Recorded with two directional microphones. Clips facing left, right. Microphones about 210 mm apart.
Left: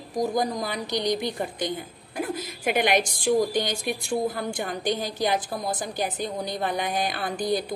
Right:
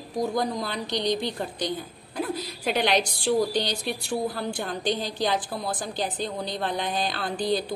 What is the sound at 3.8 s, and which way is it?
A woman's voice, 15° left (ahead or behind).